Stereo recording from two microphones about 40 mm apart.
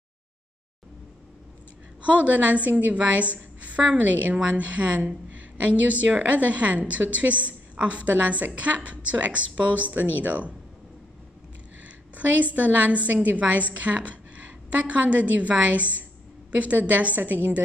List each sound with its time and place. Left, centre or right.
2.0 s a woman's voice: right
12.2 s a woman's voice: right